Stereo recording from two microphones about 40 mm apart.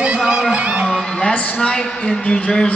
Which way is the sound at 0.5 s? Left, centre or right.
Right.